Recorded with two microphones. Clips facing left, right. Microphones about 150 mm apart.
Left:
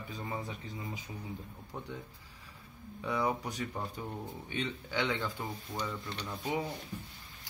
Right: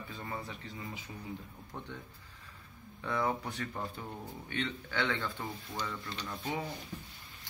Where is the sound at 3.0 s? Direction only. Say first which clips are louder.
Left 1 dB; 10° left (ahead or behind).